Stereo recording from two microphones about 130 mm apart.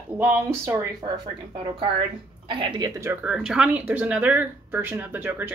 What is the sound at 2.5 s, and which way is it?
Speech, 40° right (ahead or behind).